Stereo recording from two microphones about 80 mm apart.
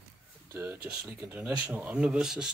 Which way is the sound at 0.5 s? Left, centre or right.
Right.